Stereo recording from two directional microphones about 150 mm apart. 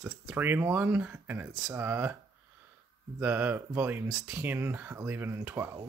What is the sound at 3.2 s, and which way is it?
Speech, 10° right (ahead or behind).